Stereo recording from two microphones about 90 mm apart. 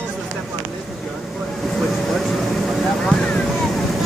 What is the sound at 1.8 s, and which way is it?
Vehicle, centre (ahead or behind).